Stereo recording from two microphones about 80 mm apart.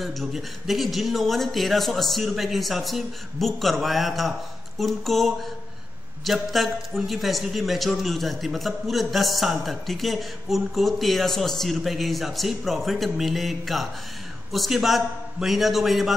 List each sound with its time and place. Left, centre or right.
0.0 s a man's voice: centre